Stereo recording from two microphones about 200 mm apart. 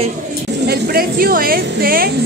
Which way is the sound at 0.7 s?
50° right (ahead or behind).